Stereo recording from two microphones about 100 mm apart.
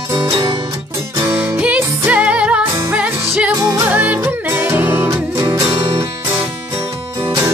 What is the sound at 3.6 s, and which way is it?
Music, 30° right (ahead or behind).